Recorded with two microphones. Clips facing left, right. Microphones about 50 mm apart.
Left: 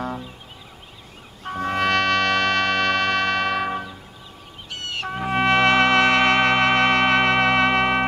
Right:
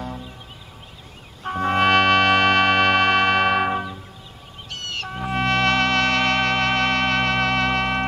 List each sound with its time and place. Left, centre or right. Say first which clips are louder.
1.6 s music: right 3 dB; centre
4.7 s trumpet: left 2 dB; centre